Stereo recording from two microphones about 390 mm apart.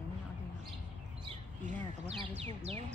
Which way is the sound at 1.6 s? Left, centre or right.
Centre.